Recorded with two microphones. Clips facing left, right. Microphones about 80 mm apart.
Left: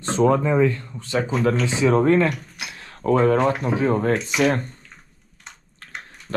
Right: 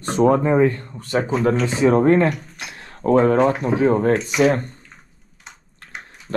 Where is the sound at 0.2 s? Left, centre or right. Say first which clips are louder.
Right 2 dB; right.